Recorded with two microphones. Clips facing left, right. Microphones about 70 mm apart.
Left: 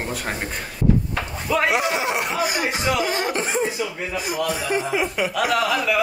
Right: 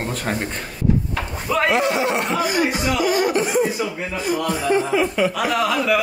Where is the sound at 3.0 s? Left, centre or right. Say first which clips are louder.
Right 5 dB; left.